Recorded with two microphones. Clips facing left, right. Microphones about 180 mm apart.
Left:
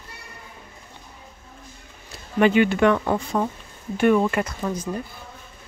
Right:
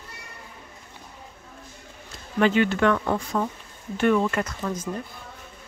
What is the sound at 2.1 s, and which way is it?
Speech, 15° left (ahead or behind).